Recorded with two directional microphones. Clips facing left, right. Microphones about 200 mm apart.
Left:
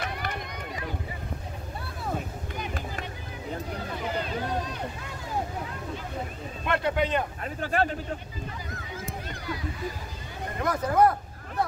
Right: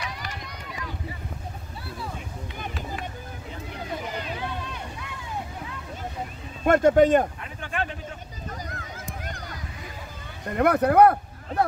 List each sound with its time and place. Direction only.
0.0 s run: 55° left (ahead or behind)
4.2 s run: 40° left (ahead or behind)
6.6 s speech: 45° right (ahead or behind)
7.4 s a man's voice: 40° left (ahead or behind)
9.2 s a sound: 45° right (ahead or behind)
10.5 s a sound: 65° right (ahead or behind)